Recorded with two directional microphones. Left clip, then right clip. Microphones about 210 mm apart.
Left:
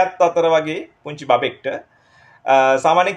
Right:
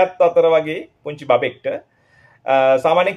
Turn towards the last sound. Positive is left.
turn(degrees=0)  # may be behind; listen again after turning